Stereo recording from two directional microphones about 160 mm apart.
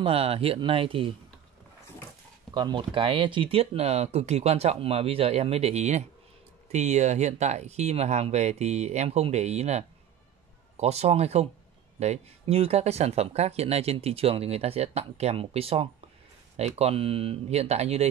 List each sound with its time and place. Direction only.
0.0 s speech: 35° right (ahead or behind)
2.5 s speech: 30° right (ahead or behind)